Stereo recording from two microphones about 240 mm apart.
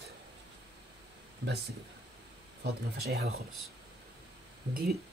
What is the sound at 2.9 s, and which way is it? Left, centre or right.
Speech, right.